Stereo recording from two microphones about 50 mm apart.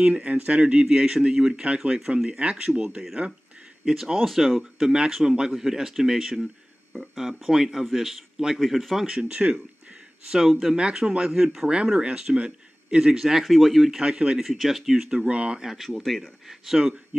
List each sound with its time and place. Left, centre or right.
0.0 s a man's voice: right; by 9.0 s centre
9.0 s speech: right
10.4 s a man's voice: centre
10.8 s speech: centre
14.0 s speech: centre
14.4 s speech: centre; by 15.6 s right
15.6 s speech: centre
15.9 s a man's voice: centre